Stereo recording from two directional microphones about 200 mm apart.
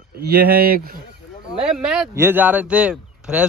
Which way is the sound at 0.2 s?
50° right (ahead or behind).